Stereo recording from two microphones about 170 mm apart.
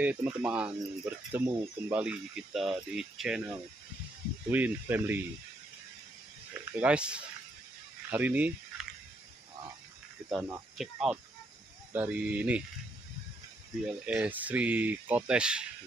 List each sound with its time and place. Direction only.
0.0 s speech: 10° right (ahead or behind)
6.6 s speech: 10° right (ahead or behind)
10.5 s speech: 5° right (ahead or behind)
14.0 s speech: 5° right (ahead or behind)